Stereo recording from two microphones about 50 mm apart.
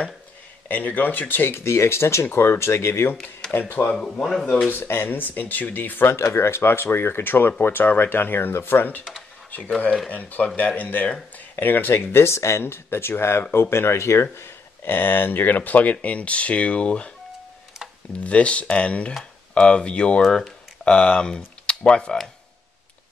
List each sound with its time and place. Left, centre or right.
0.7 s speech: left
3.5 s speech: left
4.2 s speech: centre
4.6 s speech: left
6.1 s speech: left
10.0 s speech: left
14.3 s a sound: left
15.0 s speech: left
18.2 s speech: left